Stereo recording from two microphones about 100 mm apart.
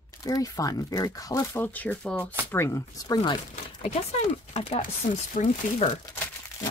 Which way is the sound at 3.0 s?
45° left (ahead or behind).